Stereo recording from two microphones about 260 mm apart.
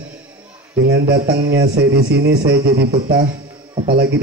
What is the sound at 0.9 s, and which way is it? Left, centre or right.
Speech, right.